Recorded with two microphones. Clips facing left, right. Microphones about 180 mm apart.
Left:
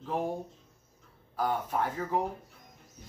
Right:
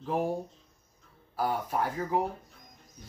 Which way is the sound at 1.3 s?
10° right (ahead or behind).